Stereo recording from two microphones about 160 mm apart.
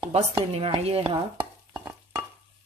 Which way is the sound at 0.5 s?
35° right (ahead or behind).